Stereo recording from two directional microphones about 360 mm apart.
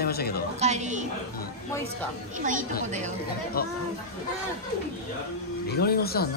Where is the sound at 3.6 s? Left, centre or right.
Left.